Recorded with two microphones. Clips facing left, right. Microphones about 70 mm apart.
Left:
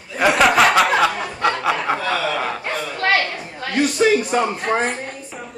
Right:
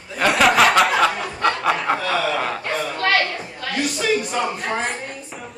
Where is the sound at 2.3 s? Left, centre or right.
Centre.